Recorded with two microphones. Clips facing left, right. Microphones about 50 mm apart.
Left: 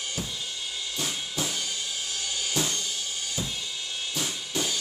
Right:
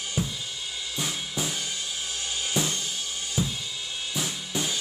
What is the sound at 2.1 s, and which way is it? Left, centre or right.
Music, right.